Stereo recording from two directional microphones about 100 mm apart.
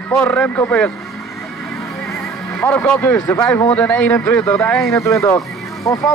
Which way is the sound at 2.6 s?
15° left (ahead or behind).